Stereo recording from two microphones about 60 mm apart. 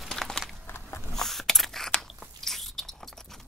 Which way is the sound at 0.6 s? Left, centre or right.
Left.